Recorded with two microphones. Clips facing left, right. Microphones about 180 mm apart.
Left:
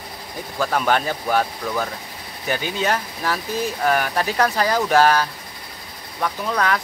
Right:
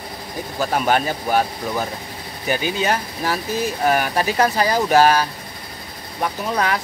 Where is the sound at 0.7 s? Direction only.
10° right (ahead or behind).